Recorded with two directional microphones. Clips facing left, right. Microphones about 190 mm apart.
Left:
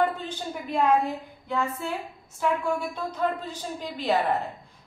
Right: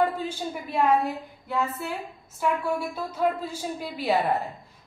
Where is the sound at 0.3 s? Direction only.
10° right (ahead or behind).